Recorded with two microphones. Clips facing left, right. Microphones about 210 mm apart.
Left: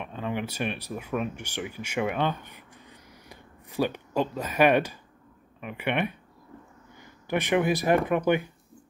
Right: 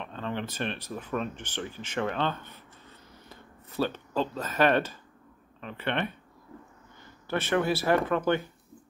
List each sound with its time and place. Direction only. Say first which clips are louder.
0.0 s speech: left 2 dB; 10° left (ahead or behind)
7.2 s speech: left 2 dB; 15° left (ahead or behind)